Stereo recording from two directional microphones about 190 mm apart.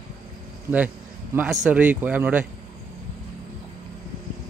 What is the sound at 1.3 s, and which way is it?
Speech, 5° right (ahead or behind).